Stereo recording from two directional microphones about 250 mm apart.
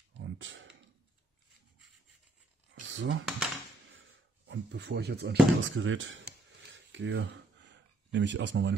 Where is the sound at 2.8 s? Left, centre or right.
Right.